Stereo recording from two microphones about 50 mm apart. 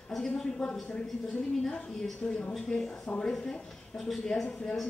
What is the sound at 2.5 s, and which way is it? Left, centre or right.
A woman's voice, centre.